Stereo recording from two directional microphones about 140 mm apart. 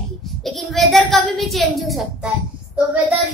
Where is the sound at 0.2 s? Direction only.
Centre (ahead or behind).